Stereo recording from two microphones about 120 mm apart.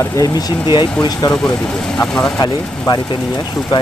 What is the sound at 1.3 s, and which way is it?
Speech, 5° left (ahead or behind).